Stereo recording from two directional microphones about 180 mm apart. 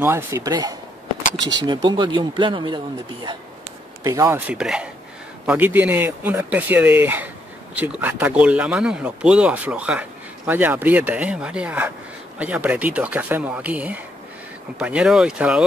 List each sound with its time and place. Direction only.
0.0 s speech: 15° right (ahead or behind)
4.0 s speech: 15° right (ahead or behind)